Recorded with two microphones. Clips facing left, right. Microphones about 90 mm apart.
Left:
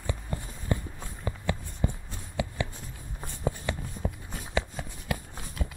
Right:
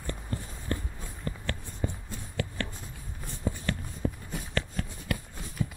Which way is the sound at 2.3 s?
15° left (ahead or behind).